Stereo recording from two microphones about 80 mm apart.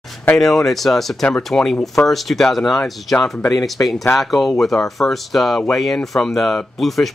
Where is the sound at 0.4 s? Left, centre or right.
Centre.